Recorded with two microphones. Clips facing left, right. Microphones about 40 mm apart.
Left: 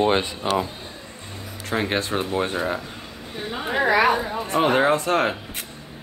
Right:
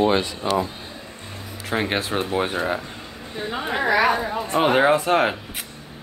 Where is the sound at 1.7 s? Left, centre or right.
Centre.